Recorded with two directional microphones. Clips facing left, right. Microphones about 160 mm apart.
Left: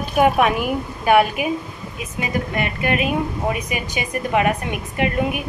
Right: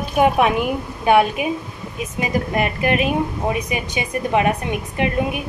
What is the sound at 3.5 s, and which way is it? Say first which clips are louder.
A woman's voice: right 1 dB; 25° right (ahead or behind).